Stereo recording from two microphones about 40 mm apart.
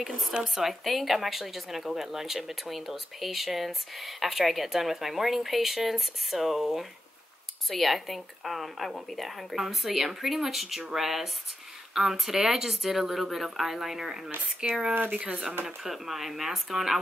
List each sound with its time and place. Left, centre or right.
0.4 s a woman's voice: centre; by 15.4 s right
15.6 s a woman's voice: centre